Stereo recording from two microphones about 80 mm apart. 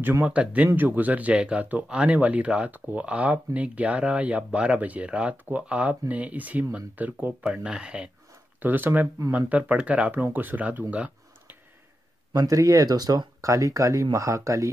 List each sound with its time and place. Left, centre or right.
0.2 s speech: centre
8.5 s speech: right
12.3 s speech: right